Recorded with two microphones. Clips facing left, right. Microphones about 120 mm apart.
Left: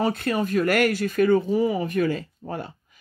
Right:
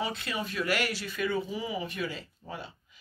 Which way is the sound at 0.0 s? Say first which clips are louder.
Left 10 dB; 50° left (ahead or behind).